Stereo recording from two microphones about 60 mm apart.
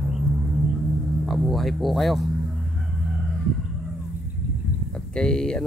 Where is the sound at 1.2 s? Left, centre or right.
Centre.